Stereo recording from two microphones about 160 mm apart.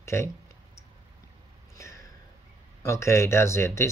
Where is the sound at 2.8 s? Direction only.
15° left (ahead or behind).